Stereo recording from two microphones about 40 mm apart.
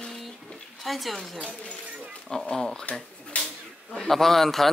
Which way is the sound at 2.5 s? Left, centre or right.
Centre.